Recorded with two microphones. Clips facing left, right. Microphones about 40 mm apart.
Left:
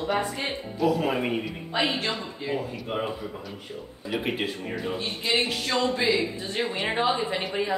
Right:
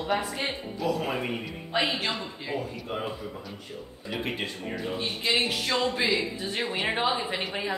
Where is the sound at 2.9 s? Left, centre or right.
Centre.